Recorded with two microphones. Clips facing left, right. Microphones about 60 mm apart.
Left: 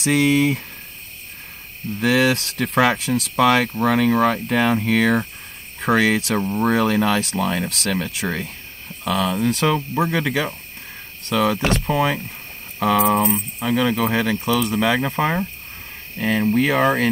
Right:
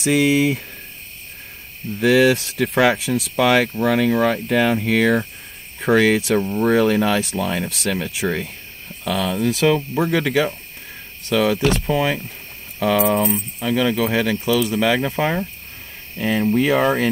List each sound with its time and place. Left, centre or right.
0.0 s speech: centre
2.0 s speech: centre
9.0 s speech: centre
12.9 s speech: centre
13.6 s speech: centre